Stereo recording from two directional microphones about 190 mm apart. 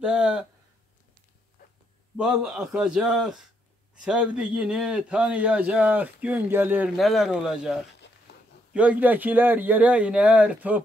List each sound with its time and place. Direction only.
0.1 s speech: 5° right (ahead or behind)
1.6 s dog: 50° left (ahead or behind)
2.4 s a man's voice: 5° right (ahead or behind)